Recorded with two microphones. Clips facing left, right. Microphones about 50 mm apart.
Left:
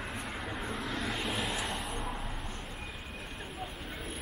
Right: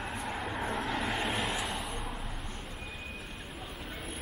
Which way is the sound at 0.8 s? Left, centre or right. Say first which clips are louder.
Right 2 dB; right.